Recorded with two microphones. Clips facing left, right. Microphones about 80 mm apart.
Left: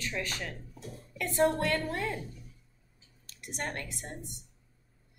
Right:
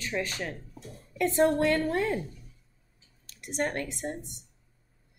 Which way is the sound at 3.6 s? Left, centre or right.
Right.